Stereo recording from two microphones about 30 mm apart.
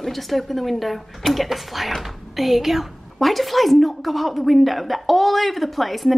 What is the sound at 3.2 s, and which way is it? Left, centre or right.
Speech, centre.